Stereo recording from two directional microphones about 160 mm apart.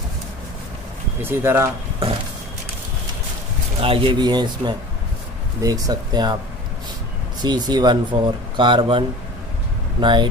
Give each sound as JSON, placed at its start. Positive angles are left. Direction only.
{"t": 1.2, "sound": "speech", "side_deg": -15}
{"t": 3.8, "sound": "speech", "side_deg": -35}
{"t": 7.4, "sound": "speech", "side_deg": -25}